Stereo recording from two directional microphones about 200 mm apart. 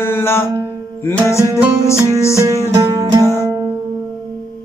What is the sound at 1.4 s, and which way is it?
Music, 15° right (ahead or behind).